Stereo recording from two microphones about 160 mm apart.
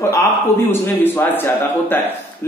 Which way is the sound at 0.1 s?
15° left (ahead or behind).